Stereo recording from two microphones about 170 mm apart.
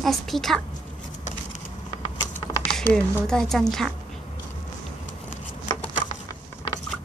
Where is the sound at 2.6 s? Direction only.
5° left (ahead or behind).